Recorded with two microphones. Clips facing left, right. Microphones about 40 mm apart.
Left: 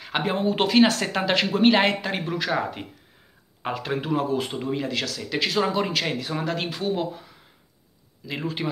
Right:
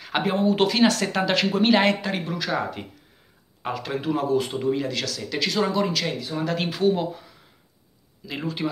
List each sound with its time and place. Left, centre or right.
0.0 s speech: centre; by 6.1 s left
6.4 s speech: centre